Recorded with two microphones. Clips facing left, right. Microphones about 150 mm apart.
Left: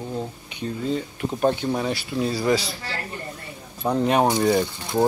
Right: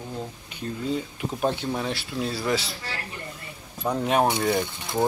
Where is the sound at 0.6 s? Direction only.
Centre (ahead or behind).